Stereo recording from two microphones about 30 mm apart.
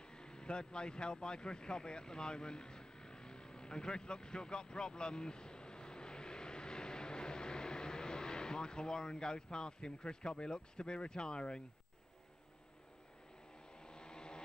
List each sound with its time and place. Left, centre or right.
0.0 s speech: left
13.7 s vehicle: left